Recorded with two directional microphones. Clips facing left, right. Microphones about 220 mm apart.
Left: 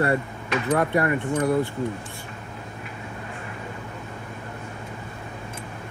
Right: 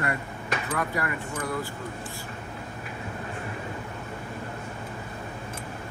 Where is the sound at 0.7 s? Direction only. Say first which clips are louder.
Left 10 dB; 25° left (ahead or behind).